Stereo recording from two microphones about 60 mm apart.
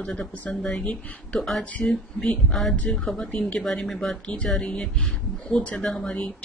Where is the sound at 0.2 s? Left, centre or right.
Centre.